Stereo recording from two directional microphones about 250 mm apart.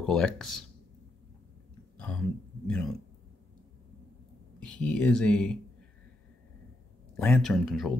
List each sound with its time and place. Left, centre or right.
0.0 s speech: centre
2.6 s speech: centre
4.6 s speech: centre
7.2 s speech: centre